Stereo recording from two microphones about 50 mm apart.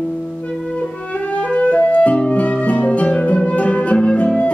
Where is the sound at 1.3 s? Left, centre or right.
Left.